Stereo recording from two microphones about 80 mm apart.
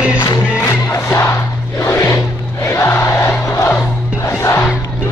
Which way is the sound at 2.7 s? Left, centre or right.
Left.